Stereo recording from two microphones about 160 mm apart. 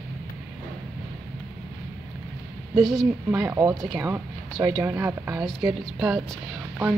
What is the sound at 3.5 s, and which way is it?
Speech, 20° right (ahead or behind).